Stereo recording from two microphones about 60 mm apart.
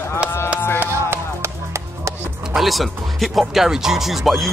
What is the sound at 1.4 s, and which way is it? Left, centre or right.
Chop, right.